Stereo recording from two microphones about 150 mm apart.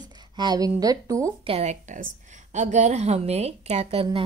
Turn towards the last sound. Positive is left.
turn(degrees=-40)  # may be behind; listen again after turning